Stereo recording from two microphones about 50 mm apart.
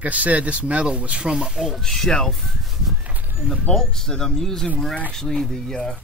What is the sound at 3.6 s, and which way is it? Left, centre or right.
Speech, centre.